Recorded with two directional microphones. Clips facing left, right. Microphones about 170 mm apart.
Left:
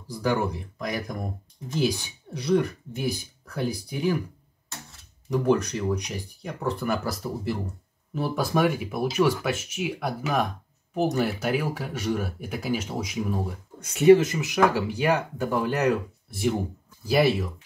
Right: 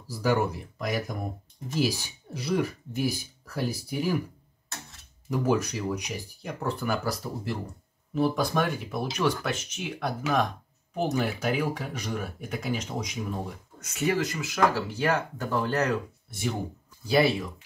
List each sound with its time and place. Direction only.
0.1 s speech: 5° right (ahead or behind)
5.3 s speech: 5° right (ahead or behind)
13.9 s speech: 25° left (ahead or behind)